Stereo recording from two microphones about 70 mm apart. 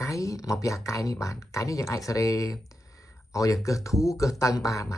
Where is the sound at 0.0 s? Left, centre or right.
Left.